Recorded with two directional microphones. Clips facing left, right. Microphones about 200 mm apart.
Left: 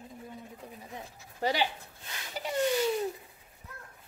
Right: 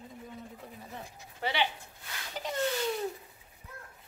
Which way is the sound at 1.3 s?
40° left (ahead or behind).